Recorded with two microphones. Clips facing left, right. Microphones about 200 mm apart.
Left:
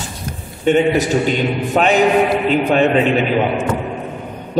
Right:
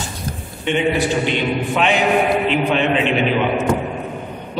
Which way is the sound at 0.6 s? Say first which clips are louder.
Left 4 dB; 45° left (ahead or behind).